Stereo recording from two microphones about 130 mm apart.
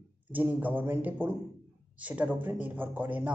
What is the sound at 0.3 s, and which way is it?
Speech, 15° right (ahead or behind).